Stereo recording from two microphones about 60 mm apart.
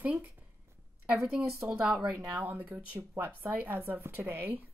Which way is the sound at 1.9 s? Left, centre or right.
Centre.